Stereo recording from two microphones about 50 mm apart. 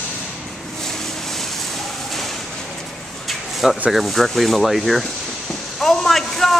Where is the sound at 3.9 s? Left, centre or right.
Centre.